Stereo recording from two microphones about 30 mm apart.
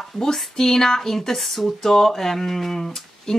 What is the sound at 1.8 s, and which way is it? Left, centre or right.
Speech, centre.